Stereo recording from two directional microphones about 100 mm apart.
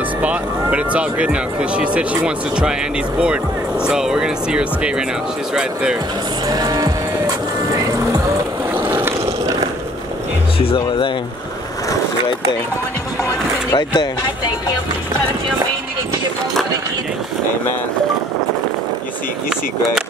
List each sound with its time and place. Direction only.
0.2 s speech: 15° right (ahead or behind)
3.8 s speech: 5° right (ahead or behind)
6.5 s music: 40° right (ahead or behind)
8.8 s skateboard: 25° right (ahead or behind)
10.6 s speech: 65° left (ahead or behind)
13.2 s a sound: 45° left (ahead or behind)